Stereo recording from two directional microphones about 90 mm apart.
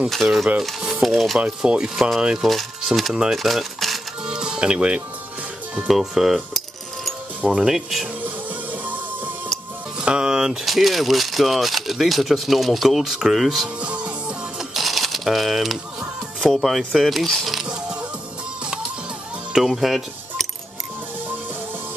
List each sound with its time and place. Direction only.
0.1 s speech: centre (ahead or behind)
8.8 s music: 20° right (ahead or behind)
9.9 s speech: 10° right (ahead or behind)
13.7 s music: 15° right (ahead or behind)
19.5 s keys jangling: 5° right (ahead or behind)